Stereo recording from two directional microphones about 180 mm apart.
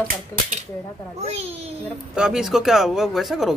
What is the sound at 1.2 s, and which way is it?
Speech, 35° right (ahead or behind).